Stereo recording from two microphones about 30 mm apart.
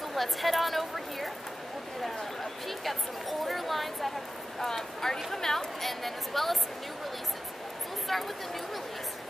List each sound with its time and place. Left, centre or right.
0.1 s a woman's voice: centre
5.0 s a woman's voice: centre
5.8 s a woman's voice: centre
8.1 s a woman's voice: centre